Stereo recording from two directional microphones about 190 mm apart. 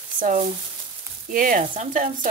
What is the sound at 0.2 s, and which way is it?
Speech, 45° right (ahead or behind).